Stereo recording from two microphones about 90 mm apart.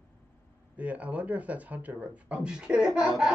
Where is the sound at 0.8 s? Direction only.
15° right (ahead or behind).